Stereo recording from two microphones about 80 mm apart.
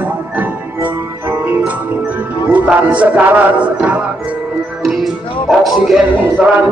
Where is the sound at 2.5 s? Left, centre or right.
Centre.